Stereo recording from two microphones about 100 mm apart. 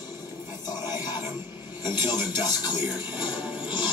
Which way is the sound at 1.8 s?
50° left (ahead or behind).